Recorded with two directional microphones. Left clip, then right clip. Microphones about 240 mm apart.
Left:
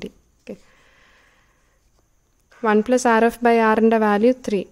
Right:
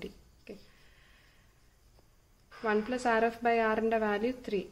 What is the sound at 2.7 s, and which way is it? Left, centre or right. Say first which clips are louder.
A woman's voice: left 13 dB; left.